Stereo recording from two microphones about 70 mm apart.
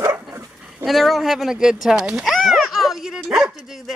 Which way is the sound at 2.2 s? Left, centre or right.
Centre.